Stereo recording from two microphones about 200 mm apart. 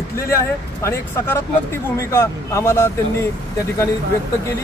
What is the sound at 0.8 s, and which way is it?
Speech, 15° left (ahead or behind).